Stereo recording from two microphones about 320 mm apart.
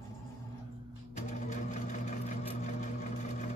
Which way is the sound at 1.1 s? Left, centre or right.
Left.